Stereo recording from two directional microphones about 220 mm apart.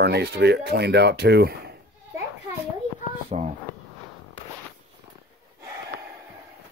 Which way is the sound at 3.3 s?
30° right (ahead or behind).